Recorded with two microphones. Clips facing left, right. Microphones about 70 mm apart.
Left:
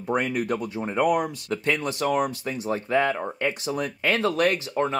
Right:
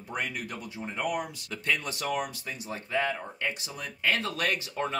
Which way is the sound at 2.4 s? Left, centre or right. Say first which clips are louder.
Left 10 dB; left.